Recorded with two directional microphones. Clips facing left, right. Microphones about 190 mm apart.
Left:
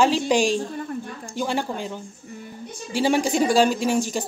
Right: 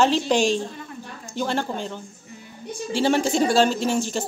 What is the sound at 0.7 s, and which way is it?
Speech, 50° left (ahead or behind).